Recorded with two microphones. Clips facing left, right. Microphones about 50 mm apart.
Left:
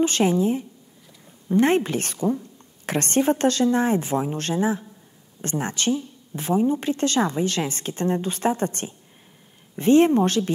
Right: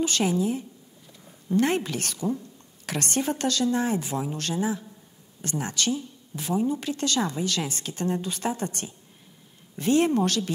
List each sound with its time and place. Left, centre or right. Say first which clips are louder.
0.0 s speech: left 5 dB; left